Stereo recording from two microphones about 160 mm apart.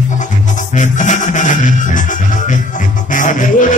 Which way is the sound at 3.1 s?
55° left (ahead or behind).